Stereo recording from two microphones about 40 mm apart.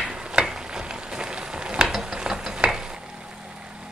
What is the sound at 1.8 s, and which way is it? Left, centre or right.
Ratchet, centre.